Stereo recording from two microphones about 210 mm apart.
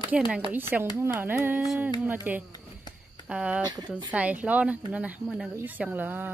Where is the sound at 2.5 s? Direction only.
20° left (ahead or behind).